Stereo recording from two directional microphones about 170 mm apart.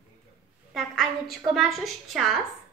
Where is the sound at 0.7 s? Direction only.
Centre (ahead or behind).